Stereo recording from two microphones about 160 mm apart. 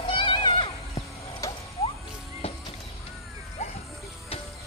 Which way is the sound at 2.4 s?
40° left (ahead or behind).